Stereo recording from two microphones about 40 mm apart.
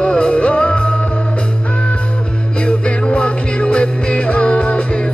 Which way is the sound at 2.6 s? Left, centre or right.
Left.